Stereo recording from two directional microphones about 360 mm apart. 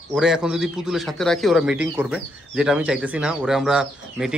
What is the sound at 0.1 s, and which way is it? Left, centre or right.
A man's voice, centre.